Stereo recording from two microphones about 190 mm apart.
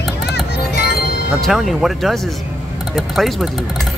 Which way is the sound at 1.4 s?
Centre (ahead or behind).